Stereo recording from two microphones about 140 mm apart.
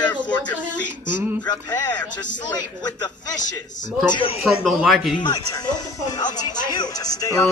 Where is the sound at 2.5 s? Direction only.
30° left (ahead or behind).